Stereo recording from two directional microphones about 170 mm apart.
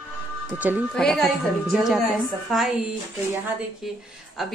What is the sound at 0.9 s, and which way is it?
A woman's voice, centre (ahead or behind).